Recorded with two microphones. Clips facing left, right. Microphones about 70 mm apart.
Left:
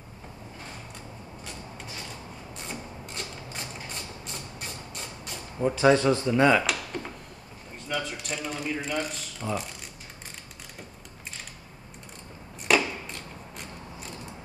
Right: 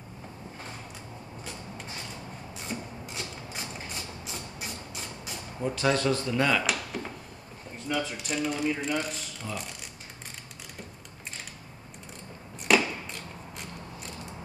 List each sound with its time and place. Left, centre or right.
2.5 s mechanisms: centre
5.6 s speech: left
6.6 s a sound: centre
7.9 s speech: centre
12.6 s chop: centre